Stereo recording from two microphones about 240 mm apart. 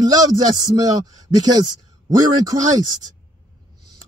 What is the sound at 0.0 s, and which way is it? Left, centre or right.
Speech, centre.